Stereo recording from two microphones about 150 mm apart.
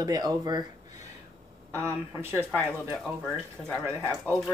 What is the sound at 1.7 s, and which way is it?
Speech, 15° right (ahead or behind).